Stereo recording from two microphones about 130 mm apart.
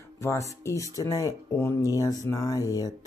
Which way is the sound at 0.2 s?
20° left (ahead or behind).